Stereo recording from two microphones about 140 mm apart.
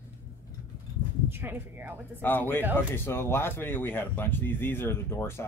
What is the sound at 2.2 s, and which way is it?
Speech, 15° left (ahead or behind).